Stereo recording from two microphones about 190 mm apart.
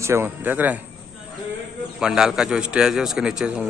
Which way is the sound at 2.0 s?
5° right (ahead or behind).